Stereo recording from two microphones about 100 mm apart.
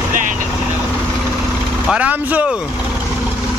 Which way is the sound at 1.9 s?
15° right (ahead or behind).